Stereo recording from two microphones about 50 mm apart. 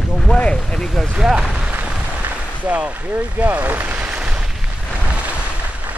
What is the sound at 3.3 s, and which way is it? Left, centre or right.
Speech, right.